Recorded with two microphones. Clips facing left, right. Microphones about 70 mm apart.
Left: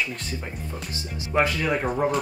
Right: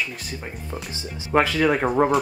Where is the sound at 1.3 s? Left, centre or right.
Right.